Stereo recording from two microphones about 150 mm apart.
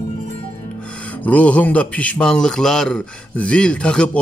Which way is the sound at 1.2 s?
10° left (ahead or behind).